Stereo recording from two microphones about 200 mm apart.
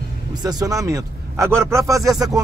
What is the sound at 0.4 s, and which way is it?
Speech, 20° right (ahead or behind).